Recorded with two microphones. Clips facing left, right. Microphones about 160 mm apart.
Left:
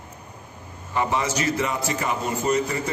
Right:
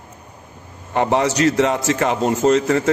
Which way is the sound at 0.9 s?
65° right (ahead or behind).